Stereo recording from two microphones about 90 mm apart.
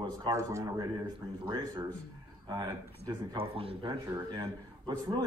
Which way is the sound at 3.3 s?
90° right.